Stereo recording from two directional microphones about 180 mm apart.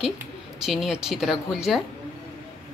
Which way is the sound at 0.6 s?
Centre (ahead or behind).